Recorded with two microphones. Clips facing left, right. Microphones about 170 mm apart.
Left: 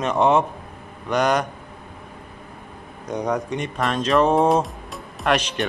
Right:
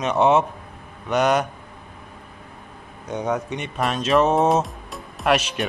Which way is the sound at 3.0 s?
Centre (ahead or behind).